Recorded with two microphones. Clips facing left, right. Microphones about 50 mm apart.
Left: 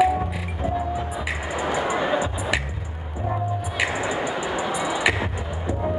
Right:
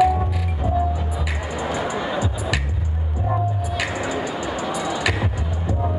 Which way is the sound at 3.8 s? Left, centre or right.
Centre.